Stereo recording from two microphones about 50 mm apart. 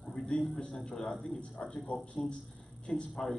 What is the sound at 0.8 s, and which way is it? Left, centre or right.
A man's voice, centre.